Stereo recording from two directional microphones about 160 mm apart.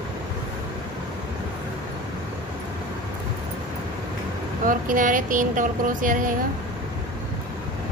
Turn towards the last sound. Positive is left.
turn(degrees=-55)  # may be behind; listen again after turning